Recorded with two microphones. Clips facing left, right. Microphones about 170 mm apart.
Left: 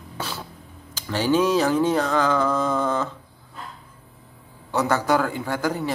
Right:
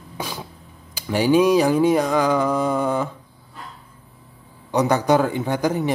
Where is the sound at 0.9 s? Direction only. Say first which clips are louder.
Right 4 dB; 10° right (ahead or behind).